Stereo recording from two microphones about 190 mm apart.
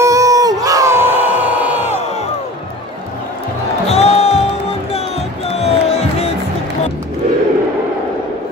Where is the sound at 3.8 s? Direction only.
35° left (ahead or behind).